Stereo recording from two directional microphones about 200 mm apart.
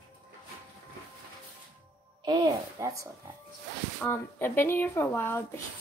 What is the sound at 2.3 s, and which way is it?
Speech, 20° right (ahead or behind).